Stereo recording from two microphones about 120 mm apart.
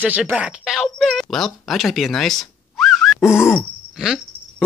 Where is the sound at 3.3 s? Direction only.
20° left (ahead or behind).